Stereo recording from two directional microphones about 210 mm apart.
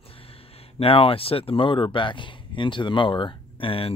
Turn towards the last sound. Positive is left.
turn(degrees=25)  # may be behind; listen again after turning